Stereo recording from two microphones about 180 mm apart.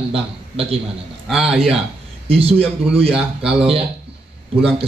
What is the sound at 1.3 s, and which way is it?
Speech, 5° right (ahead or behind).